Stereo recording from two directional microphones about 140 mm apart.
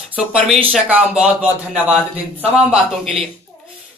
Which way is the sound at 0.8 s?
10° right (ahead or behind).